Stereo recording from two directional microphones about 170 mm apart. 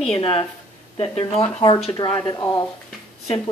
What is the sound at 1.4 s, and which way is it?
Speech, 30° left (ahead or behind).